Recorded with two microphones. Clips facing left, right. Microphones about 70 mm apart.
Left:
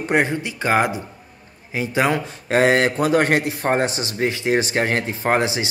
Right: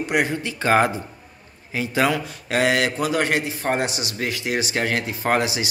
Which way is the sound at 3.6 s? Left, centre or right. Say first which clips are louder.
Left 3 dB; left.